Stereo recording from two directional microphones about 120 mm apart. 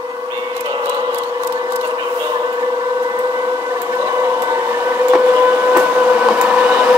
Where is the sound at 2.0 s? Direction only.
30° right (ahead or behind).